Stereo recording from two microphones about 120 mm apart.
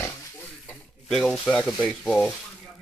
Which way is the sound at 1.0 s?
Centre (ahead or behind).